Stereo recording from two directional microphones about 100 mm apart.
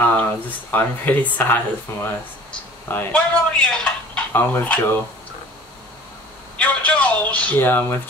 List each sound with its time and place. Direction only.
0.0 s speech: 15° left (ahead or behind)
6.6 s speech: 15° left (ahead or behind)